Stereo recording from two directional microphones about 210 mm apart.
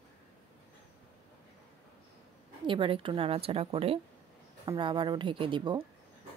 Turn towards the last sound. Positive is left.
turn(degrees=-25)  # may be behind; listen again after turning